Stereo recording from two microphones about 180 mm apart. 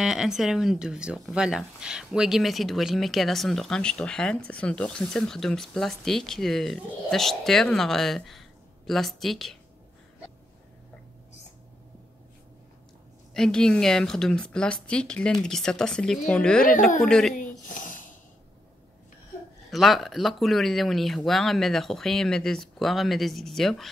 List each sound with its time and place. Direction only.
0.0 s speech: 5° right (ahead or behind)
13.3 s speech: centre (ahead or behind)
17.4 s a sound: 45° left (ahead or behind)
19.7 s speech: centre (ahead or behind)